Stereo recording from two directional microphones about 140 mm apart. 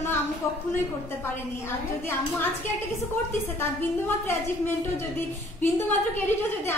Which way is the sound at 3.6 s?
15° left (ahead or behind).